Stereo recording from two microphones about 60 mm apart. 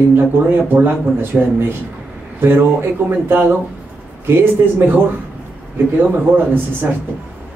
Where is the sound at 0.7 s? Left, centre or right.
Right.